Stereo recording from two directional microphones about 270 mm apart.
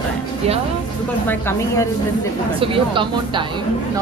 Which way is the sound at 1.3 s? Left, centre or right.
Centre.